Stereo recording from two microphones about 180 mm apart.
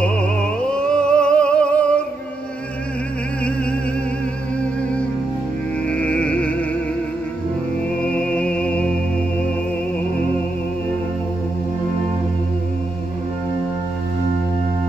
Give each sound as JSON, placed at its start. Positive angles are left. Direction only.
{"t": 0.0, "sound": "music", "side_deg": 5}
{"t": 5.9, "sound": "music", "side_deg": 5}
{"t": 8.0, "sound": "music", "side_deg": 5}